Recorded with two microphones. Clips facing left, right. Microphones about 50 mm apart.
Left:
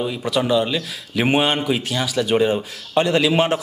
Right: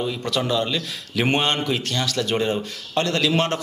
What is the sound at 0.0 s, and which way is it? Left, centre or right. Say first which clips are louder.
A man's voice: left 3 dB; centre.